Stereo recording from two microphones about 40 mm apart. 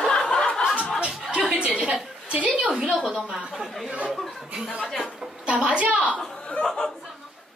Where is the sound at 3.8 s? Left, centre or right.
Right.